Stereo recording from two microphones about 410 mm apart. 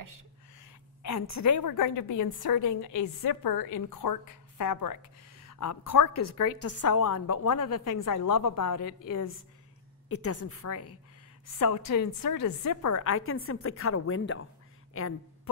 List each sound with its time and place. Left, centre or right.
1.0 s a woman's voice: left
3.2 s a woman's voice: left
5.4 s a woman's voice: left
11.9 s a woman's voice: left